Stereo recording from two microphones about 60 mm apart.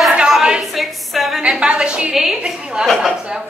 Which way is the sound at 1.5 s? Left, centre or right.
Centre.